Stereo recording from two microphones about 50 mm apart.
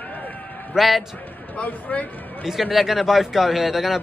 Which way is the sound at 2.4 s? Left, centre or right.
Centre.